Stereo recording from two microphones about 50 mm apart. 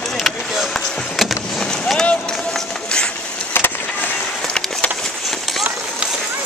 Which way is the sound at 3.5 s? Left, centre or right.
Left.